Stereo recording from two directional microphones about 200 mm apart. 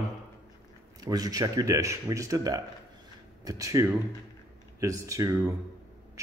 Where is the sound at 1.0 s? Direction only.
20° right (ahead or behind).